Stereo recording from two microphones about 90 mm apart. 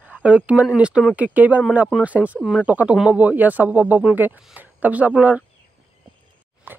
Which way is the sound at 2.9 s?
5° right (ahead or behind).